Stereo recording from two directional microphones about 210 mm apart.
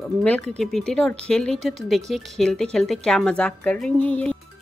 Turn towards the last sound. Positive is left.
turn(degrees=5)  # may be behind; listen again after turning